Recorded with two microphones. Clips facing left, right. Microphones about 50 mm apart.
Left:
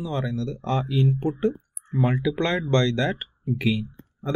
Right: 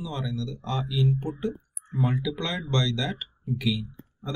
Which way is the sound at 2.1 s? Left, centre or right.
Left.